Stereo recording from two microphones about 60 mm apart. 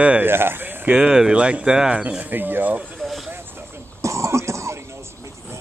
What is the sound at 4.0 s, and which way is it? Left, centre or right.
Throat clearing, right.